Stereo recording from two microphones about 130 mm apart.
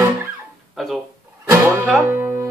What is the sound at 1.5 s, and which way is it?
Music, 20° right (ahead or behind).